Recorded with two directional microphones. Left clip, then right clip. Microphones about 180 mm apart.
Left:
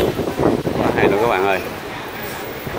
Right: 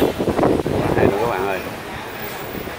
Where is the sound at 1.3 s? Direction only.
10° left (ahead or behind).